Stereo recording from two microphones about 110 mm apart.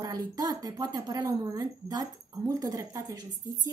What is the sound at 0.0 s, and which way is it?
Speech, 35° right (ahead or behind).